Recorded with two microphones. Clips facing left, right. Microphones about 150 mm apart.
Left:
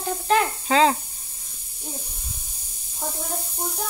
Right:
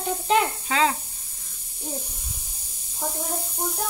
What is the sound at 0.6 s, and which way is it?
Speech, 35° left (ahead or behind).